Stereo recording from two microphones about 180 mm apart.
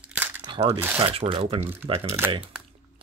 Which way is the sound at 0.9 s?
30° right (ahead or behind).